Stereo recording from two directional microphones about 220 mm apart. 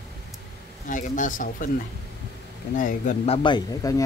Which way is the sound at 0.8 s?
35° left (ahead or behind).